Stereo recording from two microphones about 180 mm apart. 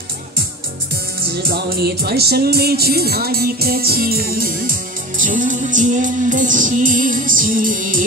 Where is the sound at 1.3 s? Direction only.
65° right (ahead or behind).